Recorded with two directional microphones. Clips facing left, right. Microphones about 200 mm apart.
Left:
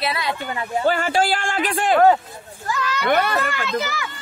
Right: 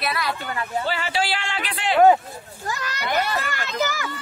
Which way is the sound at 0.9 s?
45° left (ahead or behind).